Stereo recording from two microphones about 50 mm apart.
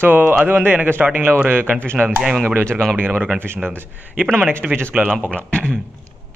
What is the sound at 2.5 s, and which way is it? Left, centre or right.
Speech, right.